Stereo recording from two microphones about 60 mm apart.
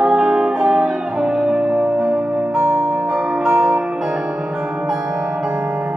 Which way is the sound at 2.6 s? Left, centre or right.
Right.